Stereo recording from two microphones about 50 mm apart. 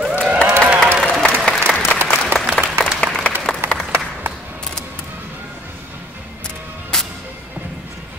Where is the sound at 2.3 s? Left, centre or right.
Right.